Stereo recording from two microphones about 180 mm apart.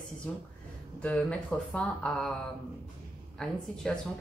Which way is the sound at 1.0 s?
5° left (ahead or behind).